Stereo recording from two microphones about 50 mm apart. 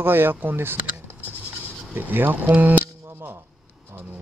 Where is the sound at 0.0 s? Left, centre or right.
Right.